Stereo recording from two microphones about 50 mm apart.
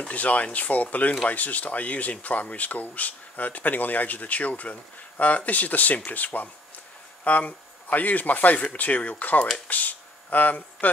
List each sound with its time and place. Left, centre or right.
0.1 s speech: left